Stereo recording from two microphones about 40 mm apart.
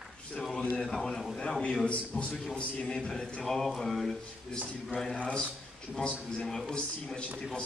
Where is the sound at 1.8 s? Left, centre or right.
Left.